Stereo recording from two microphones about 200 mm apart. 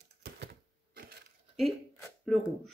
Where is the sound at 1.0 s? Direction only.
50° right (ahead or behind).